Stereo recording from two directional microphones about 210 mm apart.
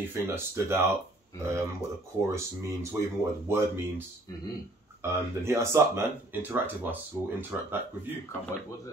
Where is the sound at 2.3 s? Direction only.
15° right (ahead or behind).